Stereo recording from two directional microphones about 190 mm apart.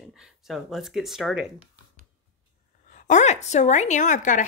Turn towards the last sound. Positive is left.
turn(degrees=40)  # may be behind; listen again after turning